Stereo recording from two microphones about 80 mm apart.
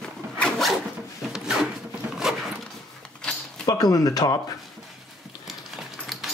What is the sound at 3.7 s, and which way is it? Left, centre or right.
Speech, left.